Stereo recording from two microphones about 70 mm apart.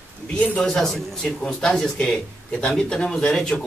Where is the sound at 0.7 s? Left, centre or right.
Centre.